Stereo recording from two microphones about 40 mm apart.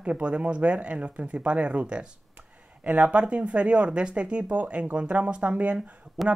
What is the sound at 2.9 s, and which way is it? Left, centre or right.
Speech, right.